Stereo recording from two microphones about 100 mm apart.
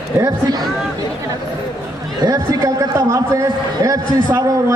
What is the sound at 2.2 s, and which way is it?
A man's voice, 40° right (ahead or behind).